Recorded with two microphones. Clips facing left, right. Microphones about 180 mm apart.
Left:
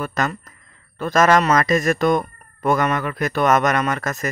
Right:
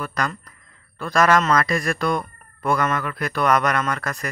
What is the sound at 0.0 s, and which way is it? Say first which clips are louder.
A man's voice: left 3 dB; 20° left (ahead or behind).